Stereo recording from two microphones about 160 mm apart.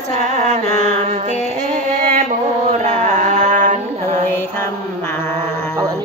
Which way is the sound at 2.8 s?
50° right (ahead or behind).